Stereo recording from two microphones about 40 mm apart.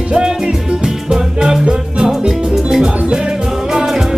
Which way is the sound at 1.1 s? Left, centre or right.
Centre.